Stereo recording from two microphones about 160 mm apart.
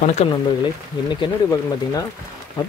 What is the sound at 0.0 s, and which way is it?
Speech, 45° left (ahead or behind).